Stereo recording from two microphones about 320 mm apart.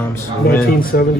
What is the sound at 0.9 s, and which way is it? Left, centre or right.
Speech, left.